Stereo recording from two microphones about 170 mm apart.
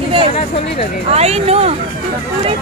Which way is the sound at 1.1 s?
40° right (ahead or behind).